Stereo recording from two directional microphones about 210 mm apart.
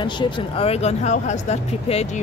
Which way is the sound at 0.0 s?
25° left (ahead or behind).